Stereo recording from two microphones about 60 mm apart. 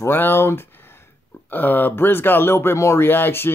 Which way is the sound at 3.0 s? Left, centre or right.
Left.